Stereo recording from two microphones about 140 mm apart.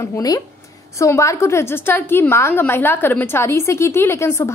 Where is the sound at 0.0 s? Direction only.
25° left (ahead or behind).